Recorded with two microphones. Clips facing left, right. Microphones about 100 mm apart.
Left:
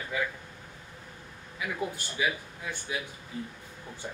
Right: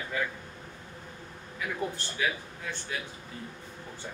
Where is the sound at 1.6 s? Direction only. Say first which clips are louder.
Even; 10° left (ahead or behind).